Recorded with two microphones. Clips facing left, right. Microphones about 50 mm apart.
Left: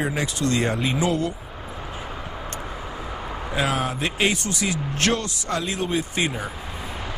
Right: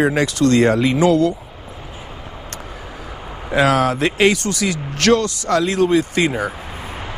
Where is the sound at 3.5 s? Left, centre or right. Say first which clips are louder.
Right 9 dB; right.